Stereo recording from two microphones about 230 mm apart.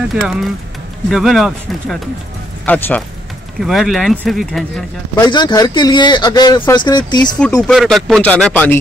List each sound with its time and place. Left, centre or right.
0.1 s a man's voice: centre
5.2 s speech: centre
7.6 s speech: centre